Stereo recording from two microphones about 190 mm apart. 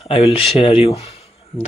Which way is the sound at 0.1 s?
30° left (ahead or behind).